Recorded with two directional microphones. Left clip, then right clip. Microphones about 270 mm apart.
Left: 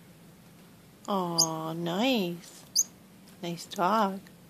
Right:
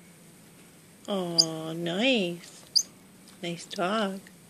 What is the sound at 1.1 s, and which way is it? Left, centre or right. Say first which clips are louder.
Speech: right 2 dB; centre.